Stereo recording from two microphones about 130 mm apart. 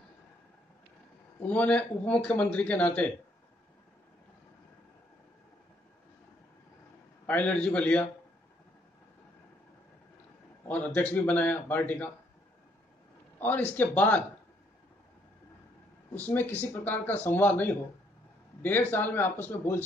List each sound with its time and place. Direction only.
1.4 s speech: 10° left (ahead or behind)
7.2 s speech: 10° left (ahead or behind)
10.7 s speech: 10° left (ahead or behind)
13.7 s speech: 10° left (ahead or behind)
16.2 s speech: 15° left (ahead or behind)